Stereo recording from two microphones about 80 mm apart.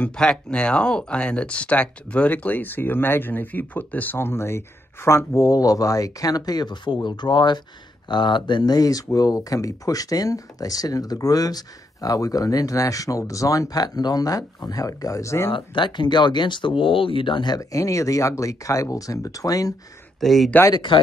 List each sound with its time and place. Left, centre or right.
0.0 s speech: centre; by 15.5 s left
15.5 s speech: left
17.6 s speech: left
20.2 s speech: centre
20.7 s speech: left